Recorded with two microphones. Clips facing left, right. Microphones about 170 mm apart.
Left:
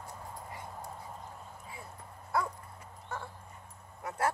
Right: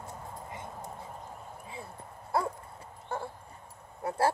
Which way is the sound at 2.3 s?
30° right (ahead or behind).